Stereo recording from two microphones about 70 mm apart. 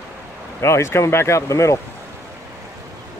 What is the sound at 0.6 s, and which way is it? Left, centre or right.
Speech, left.